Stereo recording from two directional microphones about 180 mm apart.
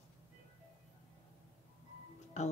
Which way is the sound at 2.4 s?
40° left (ahead or behind).